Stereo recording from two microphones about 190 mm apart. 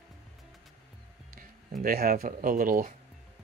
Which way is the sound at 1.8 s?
50° right (ahead or behind).